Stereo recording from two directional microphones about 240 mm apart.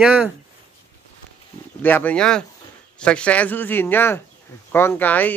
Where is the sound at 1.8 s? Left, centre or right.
Centre.